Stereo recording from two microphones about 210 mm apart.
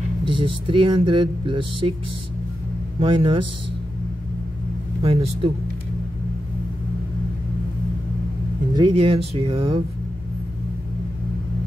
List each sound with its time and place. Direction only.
0.3 s speech: 25° right (ahead or behind)
3.0 s speech: 25° right (ahead or behind)
5.0 s speech: 25° right (ahead or behind)
8.9 s speech: 25° right (ahead or behind)